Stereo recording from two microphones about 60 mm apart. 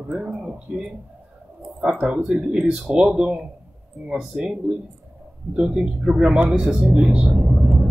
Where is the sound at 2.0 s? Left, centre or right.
Centre.